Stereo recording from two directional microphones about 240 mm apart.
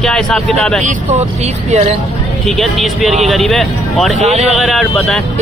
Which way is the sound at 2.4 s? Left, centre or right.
Centre.